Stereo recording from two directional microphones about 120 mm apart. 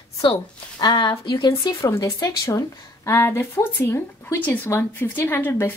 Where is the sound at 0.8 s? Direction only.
35° left (ahead or behind).